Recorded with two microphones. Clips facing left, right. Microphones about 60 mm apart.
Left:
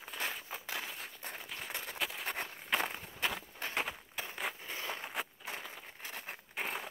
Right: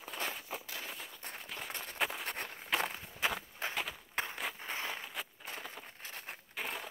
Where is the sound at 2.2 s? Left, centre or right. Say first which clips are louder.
Left 1 dB; centre.